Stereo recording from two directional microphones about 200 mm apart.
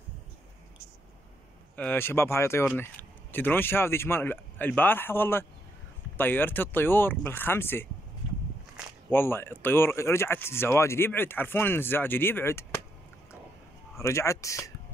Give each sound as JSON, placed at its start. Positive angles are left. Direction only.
{"t": 1.8, "sound": "speech", "side_deg": 10}
{"t": 9.1, "sound": "speech", "side_deg": 10}
{"t": 13.9, "sound": "speech", "side_deg": 15}